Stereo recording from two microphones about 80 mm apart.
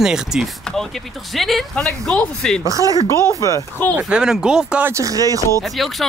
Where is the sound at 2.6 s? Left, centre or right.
Right.